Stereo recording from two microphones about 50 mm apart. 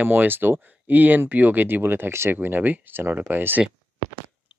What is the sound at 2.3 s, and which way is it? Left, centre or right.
Speech, right.